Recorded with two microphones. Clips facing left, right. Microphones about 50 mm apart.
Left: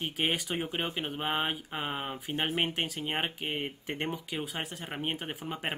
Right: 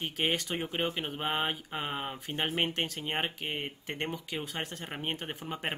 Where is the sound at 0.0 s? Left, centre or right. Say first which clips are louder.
Even; centre.